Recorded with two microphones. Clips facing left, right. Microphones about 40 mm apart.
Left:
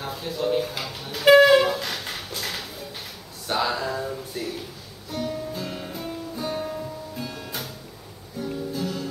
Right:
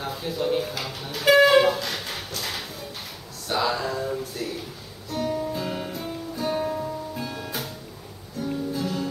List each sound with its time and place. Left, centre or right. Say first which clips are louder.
0.0 s speech: even; centre
1.2 s wind instrument: left 3 dB; centre
1.5 s wind instrument: even; centre
1.8 s a sound: even; centre
4.4 s a sound: left 1 dB; centre
5.2 s guitar: right 3 dB; centre
8.4 s music: right 1 dB; centre